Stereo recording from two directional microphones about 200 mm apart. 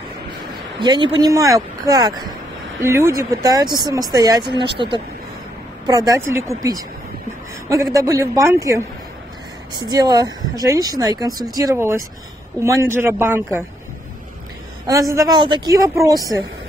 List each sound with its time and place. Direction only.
0.7 s a woman's voice: 25° right (ahead or behind)
14.9 s speech: 15° right (ahead or behind)